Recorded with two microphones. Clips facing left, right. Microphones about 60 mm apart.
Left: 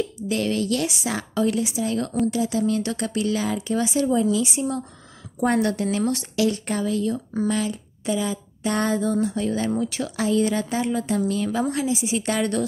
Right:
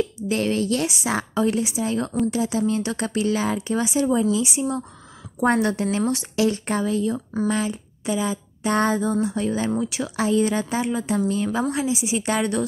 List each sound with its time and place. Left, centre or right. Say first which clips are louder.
0.3 s a woman's voice: right 1 dB; right; by 10.1 s centre
10.1 s a woman's voice: right 1 dB; right